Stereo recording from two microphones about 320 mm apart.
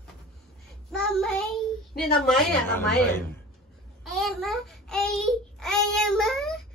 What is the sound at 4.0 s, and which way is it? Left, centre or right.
Child singing, centre.